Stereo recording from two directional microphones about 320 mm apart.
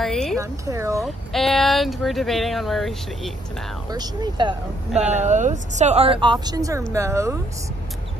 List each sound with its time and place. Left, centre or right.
0.0 s speech: centre
0.4 s speech: centre
3.9 s speech: centre